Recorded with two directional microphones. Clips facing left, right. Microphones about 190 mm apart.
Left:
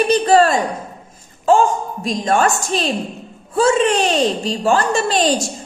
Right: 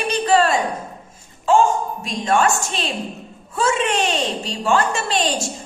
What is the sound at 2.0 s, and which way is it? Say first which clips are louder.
A woman's voice: left 3 dB; 40° left (ahead or behind).